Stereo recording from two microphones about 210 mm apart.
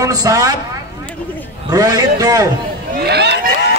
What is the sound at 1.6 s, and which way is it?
Speech, 20° right (ahead or behind).